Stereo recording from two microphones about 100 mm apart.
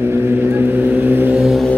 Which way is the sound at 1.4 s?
5° right (ahead or behind).